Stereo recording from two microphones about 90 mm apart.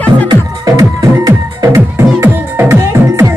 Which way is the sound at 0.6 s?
40° right (ahead or behind).